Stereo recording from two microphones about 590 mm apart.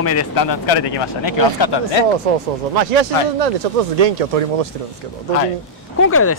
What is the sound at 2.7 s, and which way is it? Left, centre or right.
Speech, right.